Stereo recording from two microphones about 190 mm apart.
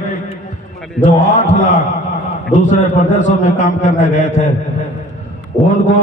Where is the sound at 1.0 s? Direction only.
40° left (ahead or behind).